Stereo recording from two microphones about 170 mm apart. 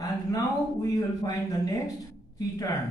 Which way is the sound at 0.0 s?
20° left (ahead or behind).